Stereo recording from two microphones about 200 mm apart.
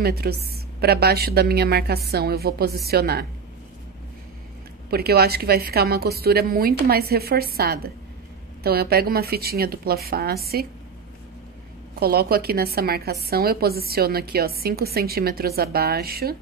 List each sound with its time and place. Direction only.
0.0 s a woman's voice: 50° right (ahead or behind)
4.9 s a woman's voice: 50° right (ahead or behind)
11.9 s a woman's voice: 50° right (ahead or behind)